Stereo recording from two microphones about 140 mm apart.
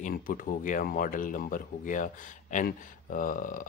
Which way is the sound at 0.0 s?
75° left (ahead or behind).